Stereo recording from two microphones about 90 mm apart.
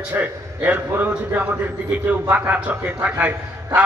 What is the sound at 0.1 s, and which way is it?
A man's voice, 15° right (ahead or behind).